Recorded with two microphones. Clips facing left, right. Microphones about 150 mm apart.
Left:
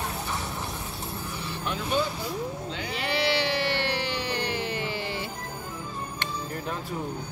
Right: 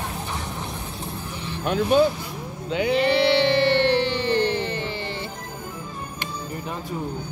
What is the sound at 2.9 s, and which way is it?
Music, 5° left (ahead or behind).